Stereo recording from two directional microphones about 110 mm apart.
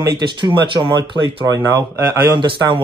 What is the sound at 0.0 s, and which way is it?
Speech, 40° right (ahead or behind).